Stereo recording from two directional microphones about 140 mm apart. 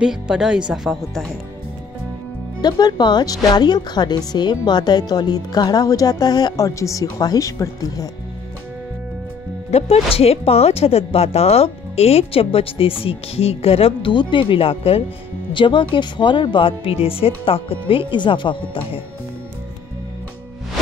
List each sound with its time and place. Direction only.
0.0 s speech: 5° right (ahead or behind)
2.6 s a woman's voice: 30° left (ahead or behind)
9.7 s speech: 45° left (ahead or behind)